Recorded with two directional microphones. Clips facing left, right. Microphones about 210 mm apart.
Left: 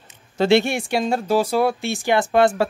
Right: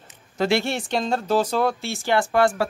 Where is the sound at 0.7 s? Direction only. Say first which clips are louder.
Left 3 dB; 10° left (ahead or behind).